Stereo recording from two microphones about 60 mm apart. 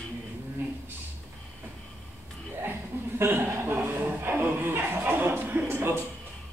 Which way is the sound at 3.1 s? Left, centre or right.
Right.